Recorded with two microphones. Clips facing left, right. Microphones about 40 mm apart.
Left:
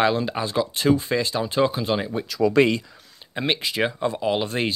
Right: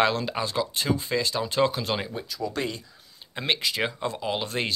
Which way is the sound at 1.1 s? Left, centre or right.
Left.